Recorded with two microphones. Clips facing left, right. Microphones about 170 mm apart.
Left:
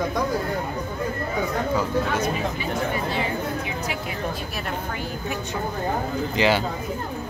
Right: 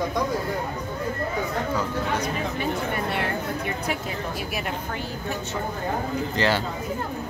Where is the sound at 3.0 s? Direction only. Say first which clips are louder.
Left 1 dB; 65° right (ahead or behind).